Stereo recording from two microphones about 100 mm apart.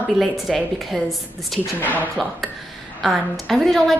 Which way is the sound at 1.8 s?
15° left (ahead or behind).